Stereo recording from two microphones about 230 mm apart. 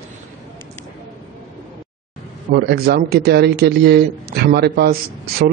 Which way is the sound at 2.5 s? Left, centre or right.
Right.